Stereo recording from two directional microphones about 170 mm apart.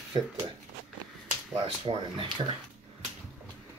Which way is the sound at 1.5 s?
30° right (ahead or behind).